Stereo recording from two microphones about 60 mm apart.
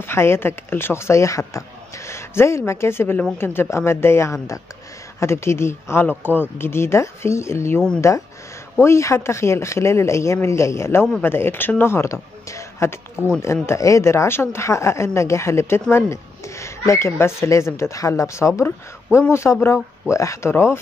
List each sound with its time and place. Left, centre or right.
0.0 s speech: left
12.1 s speech: left
20.5 s speech: left